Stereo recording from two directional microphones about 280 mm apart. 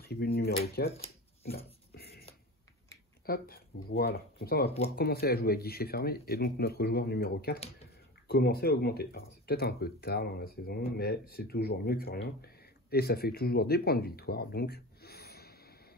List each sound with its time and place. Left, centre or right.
0.0 s speech: left
1.0 s a sound: left
3.3 s speech: left